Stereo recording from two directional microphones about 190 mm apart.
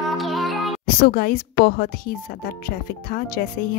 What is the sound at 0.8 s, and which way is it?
Speech, 55° left (ahead or behind).